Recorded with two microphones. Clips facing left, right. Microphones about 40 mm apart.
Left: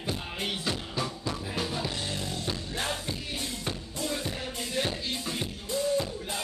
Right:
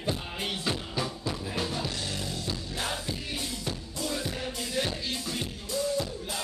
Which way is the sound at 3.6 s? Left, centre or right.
Left.